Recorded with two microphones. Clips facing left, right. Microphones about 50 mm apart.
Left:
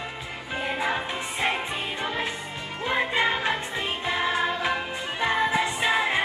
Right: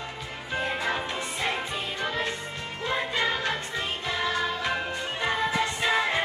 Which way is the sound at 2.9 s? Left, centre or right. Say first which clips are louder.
Left 3 dB; left.